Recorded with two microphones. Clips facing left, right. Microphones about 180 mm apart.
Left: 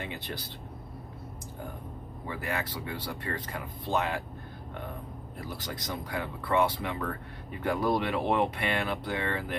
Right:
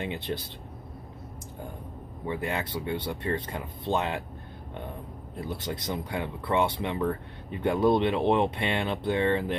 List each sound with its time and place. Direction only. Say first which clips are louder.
0.1 s speech: right 6 dB; 25° right (ahead or behind)
2.2 s speech: right 3 dB; 25° right (ahead or behind)
5.4 s speech: right 5 dB; 25° right (ahead or behind)